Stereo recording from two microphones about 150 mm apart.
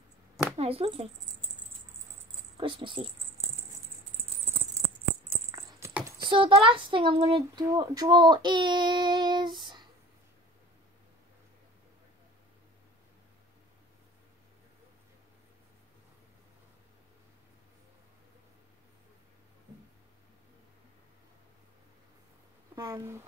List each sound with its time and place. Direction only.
0.6 s speech: 40° right (ahead or behind)
2.5 s speech: 35° right (ahead or behind)
5.8 s dog: 20° right (ahead or behind)
6.2 s speech: 35° right (ahead or behind)
7.5 s speech: 25° right (ahead or behind)
22.8 s speech: 25° right (ahead or behind)